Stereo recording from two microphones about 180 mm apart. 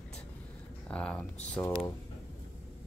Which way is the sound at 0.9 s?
5° left (ahead or behind).